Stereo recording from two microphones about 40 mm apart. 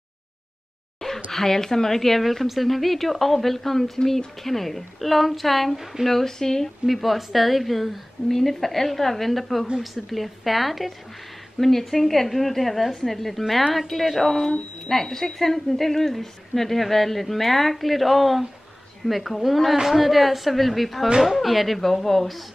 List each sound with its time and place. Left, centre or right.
1.3 s speech: centre
6.9 s speech: centre
9.7 s a woman's voice: centre
10.0 s speech: centre
11.6 s speech: centre